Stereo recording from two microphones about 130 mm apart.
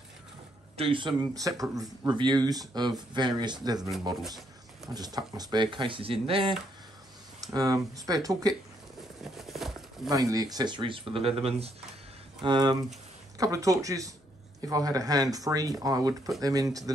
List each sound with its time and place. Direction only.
0.7 s speech: 40° right (ahead or behind)
1.4 s speech: 25° right (ahead or behind)
4.9 s speech: 30° right (ahead or behind)
7.5 s speech: 25° right (ahead or behind)
9.2 s a sound: centre (ahead or behind)
10.0 s speech: 30° right (ahead or behind); by 11.7 s 50° right (ahead or behind)
12.4 s speech: 35° right (ahead or behind)